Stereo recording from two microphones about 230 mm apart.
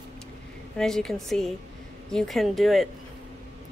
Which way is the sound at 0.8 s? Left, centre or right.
Centre.